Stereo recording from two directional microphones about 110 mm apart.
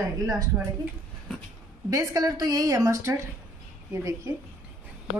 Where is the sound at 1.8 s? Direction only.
35° right (ahead or behind).